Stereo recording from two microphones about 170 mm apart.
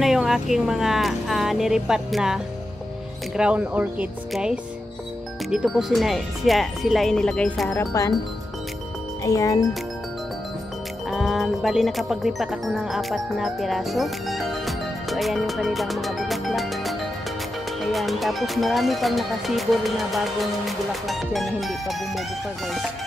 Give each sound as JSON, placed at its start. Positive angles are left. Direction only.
{"t": 0.0, "sound": "speech", "side_deg": 0}
{"t": 7.7, "sound": "speech", "side_deg": 15}
{"t": 9.2, "sound": "speech", "side_deg": 20}
{"t": 11.1, "sound": "speech", "side_deg": 0}